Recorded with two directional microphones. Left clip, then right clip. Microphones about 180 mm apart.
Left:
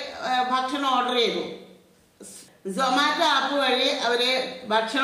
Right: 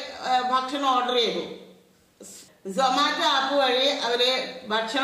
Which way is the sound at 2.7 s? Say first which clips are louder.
Even; 15° left (ahead or behind).